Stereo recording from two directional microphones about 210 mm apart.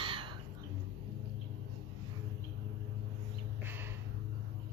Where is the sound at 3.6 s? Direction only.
10° right (ahead or behind).